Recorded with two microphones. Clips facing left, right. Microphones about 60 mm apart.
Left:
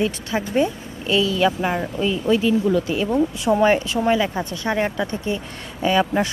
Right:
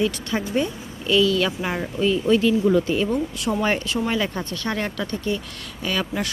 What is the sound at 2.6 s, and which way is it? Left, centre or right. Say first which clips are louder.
Speech: right 1 dB; centre.